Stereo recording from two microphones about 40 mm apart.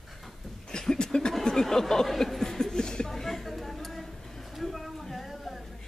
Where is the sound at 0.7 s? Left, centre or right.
Centre.